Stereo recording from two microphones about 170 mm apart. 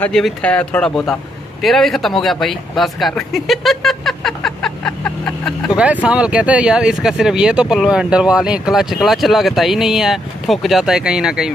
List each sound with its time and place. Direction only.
0.0 s speech: 5° left (ahead or behind)
1.6 s a sound: centre (ahead or behind)
6.0 s speech: 5° right (ahead or behind)